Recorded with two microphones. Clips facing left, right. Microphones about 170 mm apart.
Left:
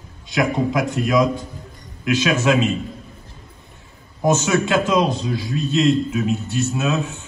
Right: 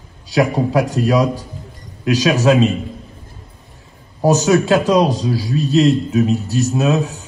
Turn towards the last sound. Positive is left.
turn(degrees=-35)  # may be behind; listen again after turning